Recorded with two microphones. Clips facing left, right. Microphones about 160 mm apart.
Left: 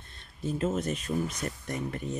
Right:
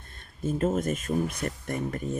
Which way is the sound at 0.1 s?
50° right (ahead or behind).